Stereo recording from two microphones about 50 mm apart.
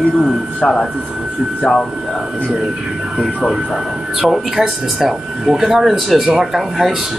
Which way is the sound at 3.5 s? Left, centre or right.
Centre.